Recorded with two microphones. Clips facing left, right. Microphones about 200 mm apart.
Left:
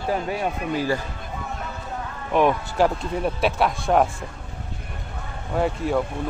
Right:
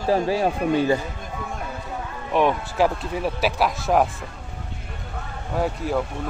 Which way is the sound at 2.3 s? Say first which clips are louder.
Left 1 dB; centre (ahead or behind).